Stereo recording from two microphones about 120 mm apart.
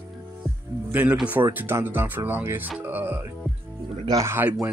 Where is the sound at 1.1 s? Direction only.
15° right (ahead or behind).